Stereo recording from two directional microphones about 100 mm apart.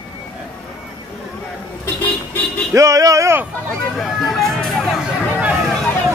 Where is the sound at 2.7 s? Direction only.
30° right (ahead or behind).